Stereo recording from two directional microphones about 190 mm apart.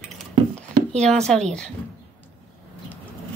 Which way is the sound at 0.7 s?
35° right (ahead or behind).